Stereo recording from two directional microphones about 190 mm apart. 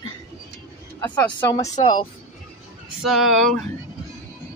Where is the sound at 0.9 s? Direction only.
10° left (ahead or behind).